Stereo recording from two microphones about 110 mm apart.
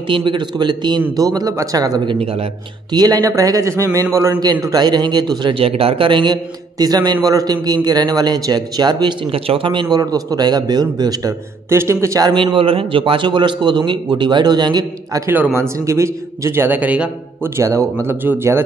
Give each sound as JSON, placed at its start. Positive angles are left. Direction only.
{"t": 0.1, "sound": "a man's voice", "side_deg": -50}
{"t": 9.3, "sound": "a man's voice", "side_deg": -55}
{"t": 12.4, "sound": "a man's voice", "side_deg": -55}
{"t": 15.2, "sound": "a man's voice", "side_deg": -20}
{"t": 17.6, "sound": "a man's voice", "side_deg": -25}